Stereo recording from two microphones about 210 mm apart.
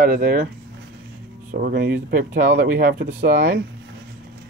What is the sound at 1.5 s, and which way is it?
Speech, 45° right (ahead or behind).